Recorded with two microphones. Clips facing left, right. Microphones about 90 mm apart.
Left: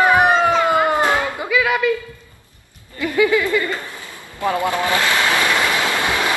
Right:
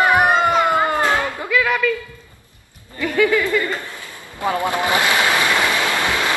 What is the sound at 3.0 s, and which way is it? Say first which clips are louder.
Speech: left 1 dB; 10° left (ahead or behind).